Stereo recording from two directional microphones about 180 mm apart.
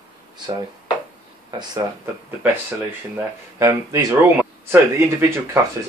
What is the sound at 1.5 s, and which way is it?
Speech, 25° right (ahead or behind).